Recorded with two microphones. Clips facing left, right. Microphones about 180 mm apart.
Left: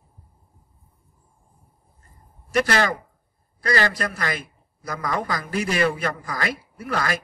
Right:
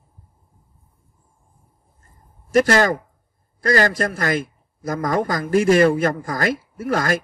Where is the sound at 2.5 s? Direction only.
45° right (ahead or behind).